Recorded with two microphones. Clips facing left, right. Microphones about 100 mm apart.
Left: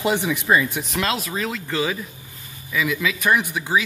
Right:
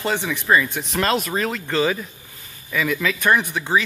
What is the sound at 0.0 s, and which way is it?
Speech, 15° left (ahead or behind).